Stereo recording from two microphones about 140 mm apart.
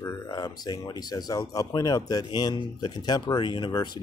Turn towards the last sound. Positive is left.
turn(degrees=30)  # may be behind; listen again after turning